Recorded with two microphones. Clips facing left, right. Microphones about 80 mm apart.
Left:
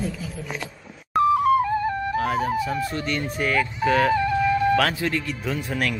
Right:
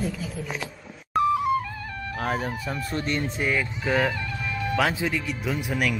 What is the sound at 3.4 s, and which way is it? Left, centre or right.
Speech, centre.